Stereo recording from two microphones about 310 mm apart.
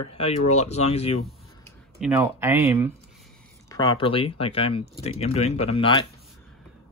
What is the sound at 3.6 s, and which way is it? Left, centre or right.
Speech, centre.